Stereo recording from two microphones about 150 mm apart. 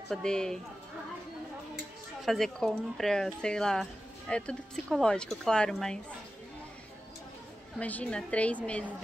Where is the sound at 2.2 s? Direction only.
Centre (ahead or behind).